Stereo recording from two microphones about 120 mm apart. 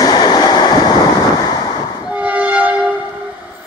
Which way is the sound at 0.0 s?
35° left (ahead or behind).